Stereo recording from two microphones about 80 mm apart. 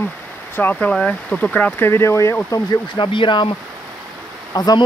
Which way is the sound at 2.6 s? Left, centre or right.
Left.